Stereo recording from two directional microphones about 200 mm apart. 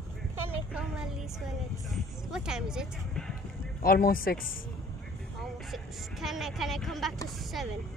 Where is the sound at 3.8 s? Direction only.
50° left (ahead or behind).